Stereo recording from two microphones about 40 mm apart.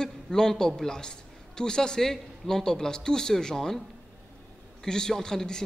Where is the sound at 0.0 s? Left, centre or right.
Centre.